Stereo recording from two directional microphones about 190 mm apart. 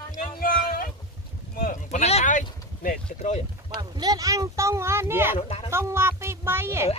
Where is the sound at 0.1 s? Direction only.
45° left (ahead or behind).